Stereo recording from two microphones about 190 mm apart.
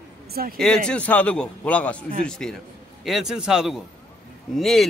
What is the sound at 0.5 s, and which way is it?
A man's voice, centre (ahead or behind).